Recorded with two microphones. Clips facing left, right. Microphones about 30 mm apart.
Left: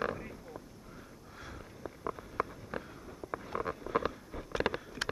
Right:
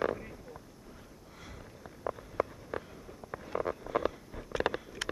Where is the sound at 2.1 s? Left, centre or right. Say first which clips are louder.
Right 2 dB; centre.